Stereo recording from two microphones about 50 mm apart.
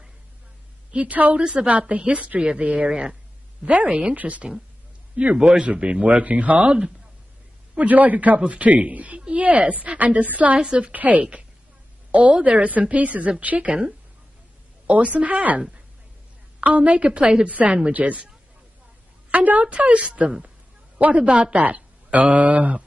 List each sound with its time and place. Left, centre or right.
0.9 s speech: right
1.4 s speech: centre
2.9 s a woman's voice: centre
3.6 s a woman's voice: right
10.6 s speech: centre
10.9 s a woman's voice: right
14.9 s a woman's voice: right
17.5 s a woman's voice: right
19.3 s speech: right
20.2 s a woman's voice: centre
21.0 s speech: right